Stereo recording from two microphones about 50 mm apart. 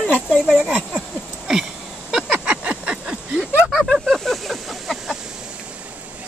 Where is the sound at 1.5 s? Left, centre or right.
Centre.